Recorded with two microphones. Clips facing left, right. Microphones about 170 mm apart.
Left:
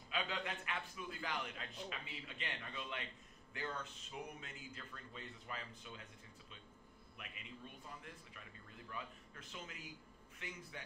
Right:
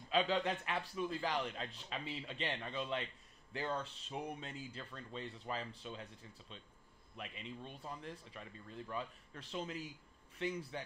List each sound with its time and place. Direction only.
0.1 s a man's voice: 35° right (ahead or behind)
7.2 s a man's voice: 30° right (ahead or behind)